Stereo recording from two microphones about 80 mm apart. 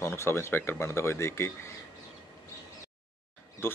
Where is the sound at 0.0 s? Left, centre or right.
Left.